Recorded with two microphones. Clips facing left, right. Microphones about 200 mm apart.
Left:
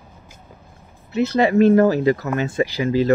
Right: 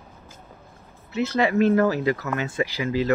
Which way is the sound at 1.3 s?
30° left (ahead or behind).